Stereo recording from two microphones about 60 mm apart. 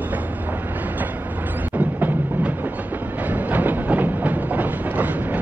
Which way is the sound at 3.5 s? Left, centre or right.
Right.